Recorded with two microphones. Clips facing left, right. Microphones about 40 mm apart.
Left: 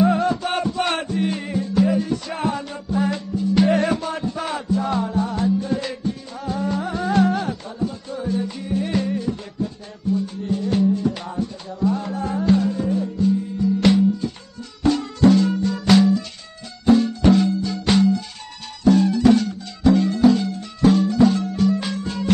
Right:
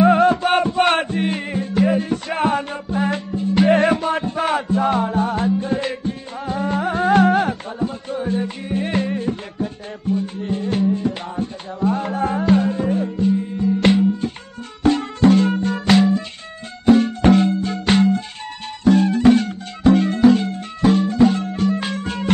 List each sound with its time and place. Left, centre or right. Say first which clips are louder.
0.0 s music: right 5 dB; right
16.8 s music: right 2 dB; right